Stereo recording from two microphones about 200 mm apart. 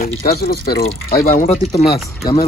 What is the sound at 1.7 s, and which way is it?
Speech, 25° left (ahead or behind).